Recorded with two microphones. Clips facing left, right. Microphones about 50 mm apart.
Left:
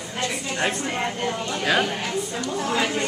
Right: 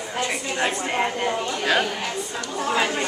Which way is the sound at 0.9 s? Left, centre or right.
Centre.